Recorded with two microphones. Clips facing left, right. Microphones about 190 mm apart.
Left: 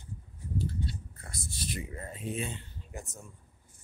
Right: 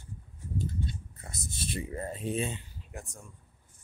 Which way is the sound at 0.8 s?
20° right (ahead or behind).